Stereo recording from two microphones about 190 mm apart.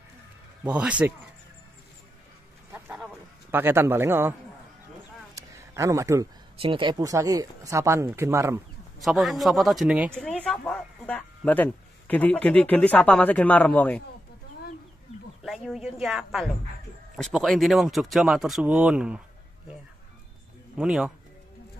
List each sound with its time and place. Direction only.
0.7 s speech: 5° right (ahead or behind)
2.7 s wild animals: 5° right (ahead or behind)
3.5 s speech: 10° right (ahead or behind)
5.3 s a sound: 15° right (ahead or behind)
6.6 s speech: 25° right (ahead or behind)
9.0 s speech: centre (ahead or behind)
10.1 s speech: 5° left (ahead or behind)
15.4 s a woman's voice: centre (ahead or behind)
20.7 s speech: 5° right (ahead or behind)